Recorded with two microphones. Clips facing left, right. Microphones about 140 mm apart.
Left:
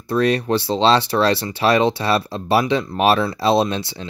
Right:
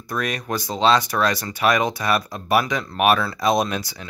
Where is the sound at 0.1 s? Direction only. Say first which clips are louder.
Left 8 dB; 30° left (ahead or behind).